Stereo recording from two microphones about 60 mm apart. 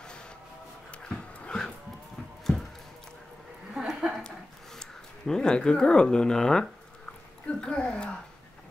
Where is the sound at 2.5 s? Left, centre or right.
Left.